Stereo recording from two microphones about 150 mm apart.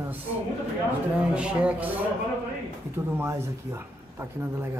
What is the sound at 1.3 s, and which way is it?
Speech, 5° right (ahead or behind).